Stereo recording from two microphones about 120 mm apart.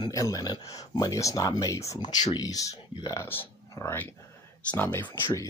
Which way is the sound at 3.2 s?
20° left (ahead or behind).